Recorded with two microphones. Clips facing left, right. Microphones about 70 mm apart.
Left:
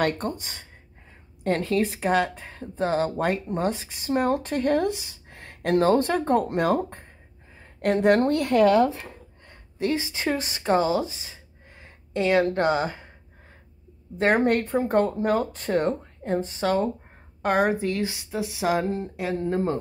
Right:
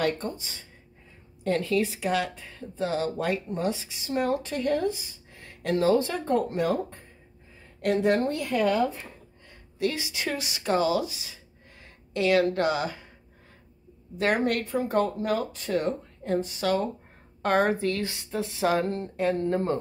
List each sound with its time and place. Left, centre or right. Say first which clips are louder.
0.0 s speech: left 3 dB; left
1.4 s a woman's voice: left 2 dB; left
9.8 s speech: left 3 dB; left
14.1 s speech: left 4 dB; left
17.4 s speech: left 1 dB; centre